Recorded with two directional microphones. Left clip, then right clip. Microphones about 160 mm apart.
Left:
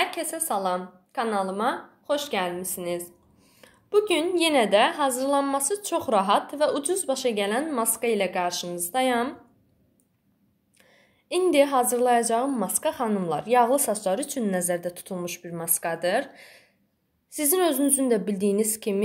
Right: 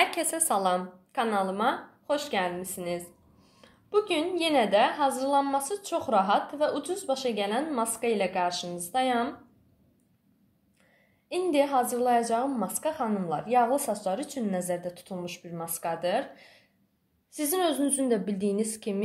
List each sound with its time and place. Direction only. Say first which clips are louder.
0.0 s a woman's voice: right 1 dB; centre (ahead or behind)
1.1 s a woman's voice: left 1 dB; 15° left (ahead or behind); by 9.3 s 45° left (ahead or behind)
11.2 s a woman's voice: left 5 dB; 55° left (ahead or behind)